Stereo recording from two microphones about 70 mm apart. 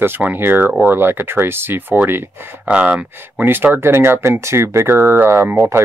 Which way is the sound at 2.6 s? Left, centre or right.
Centre.